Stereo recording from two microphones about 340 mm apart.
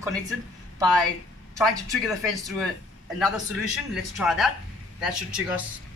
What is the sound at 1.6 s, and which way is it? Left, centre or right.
A man's voice, centre.